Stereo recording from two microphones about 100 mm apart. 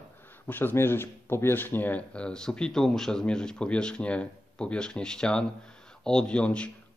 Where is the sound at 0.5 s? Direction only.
20° left (ahead or behind).